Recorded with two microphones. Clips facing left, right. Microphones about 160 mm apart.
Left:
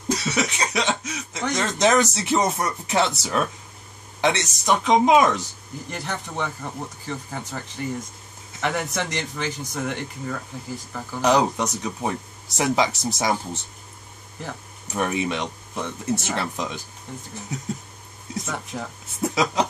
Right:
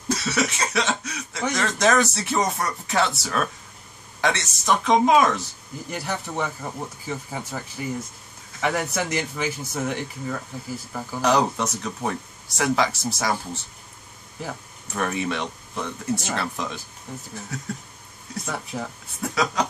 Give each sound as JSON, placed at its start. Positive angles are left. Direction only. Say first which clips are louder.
{"t": 0.1, "sound": "cough", "louder": "even", "side_deg": 15}
{"t": 1.5, "sound": "speech", "louder": "left 1 dB", "side_deg": 20}
{"t": 5.9, "sound": "speech", "louder": "right 2 dB", "side_deg": -5}
{"t": 11.1, "sound": "speech", "louder": "left 1 dB", "side_deg": 15}
{"t": 14.4, "sound": "speech", "louder": "right 1 dB", "side_deg": 0}
{"t": 15.0, "sound": "speech", "louder": "left 1 dB", "side_deg": 15}
{"t": 18.4, "sound": "speech", "louder": "right 2 dB", "side_deg": 0}
{"t": 19.2, "sound": "speech", "louder": "left 2 dB", "side_deg": 20}